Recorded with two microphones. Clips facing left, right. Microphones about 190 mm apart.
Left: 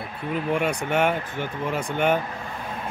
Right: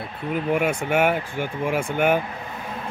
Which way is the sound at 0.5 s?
5° right (ahead or behind).